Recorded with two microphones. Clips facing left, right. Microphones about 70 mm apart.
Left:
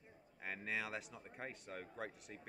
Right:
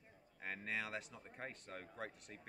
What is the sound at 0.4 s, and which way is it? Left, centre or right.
Speech, centre.